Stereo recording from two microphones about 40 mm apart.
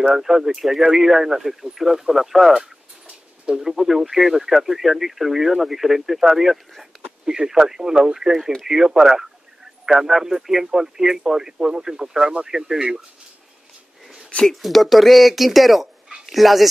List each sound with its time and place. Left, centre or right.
0.1 s speech: centre
3.6 s speech: centre
6.9 s a sound: centre
7.2 s speech: centre
8.6 s speech: centre
14.4 s speech: centre